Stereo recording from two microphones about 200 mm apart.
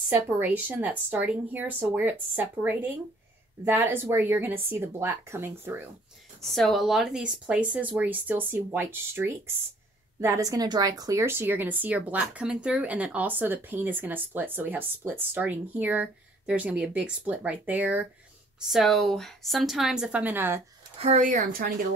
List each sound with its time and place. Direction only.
0.1 s speech: 10° right (ahead or behind)
6.4 s a woman's voice: centre (ahead or behind)
21.0 s speech: 35° right (ahead or behind)